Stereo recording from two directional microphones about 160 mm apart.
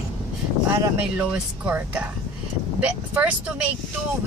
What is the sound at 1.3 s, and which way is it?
Speech, 10° right (ahead or behind).